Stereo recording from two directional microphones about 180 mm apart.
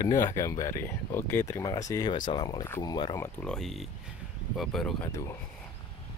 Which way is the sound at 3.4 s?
5° left (ahead or behind).